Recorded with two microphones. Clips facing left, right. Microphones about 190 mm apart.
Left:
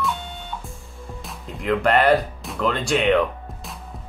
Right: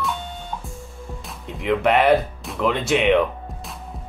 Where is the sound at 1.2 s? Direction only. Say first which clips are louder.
Even; centre (ahead or behind).